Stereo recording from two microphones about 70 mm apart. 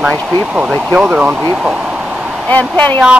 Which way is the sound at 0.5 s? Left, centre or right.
Centre.